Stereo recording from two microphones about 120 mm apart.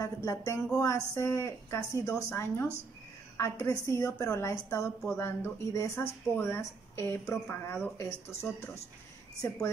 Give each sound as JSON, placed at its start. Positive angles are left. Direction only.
{"t": 0.0, "sound": "a woman's voice", "side_deg": 25}